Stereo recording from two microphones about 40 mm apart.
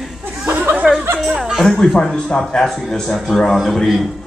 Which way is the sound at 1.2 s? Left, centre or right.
Centre.